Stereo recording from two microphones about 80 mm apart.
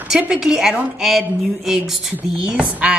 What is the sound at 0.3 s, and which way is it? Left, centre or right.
Speech, centre.